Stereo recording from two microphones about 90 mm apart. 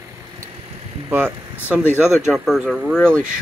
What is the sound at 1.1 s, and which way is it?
Speech, 20° right (ahead or behind).